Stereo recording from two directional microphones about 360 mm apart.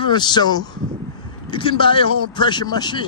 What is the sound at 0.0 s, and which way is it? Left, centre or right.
A man's voice, centre.